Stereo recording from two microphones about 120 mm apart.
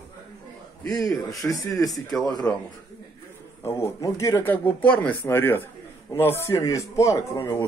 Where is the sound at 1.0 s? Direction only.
25° left (ahead or behind).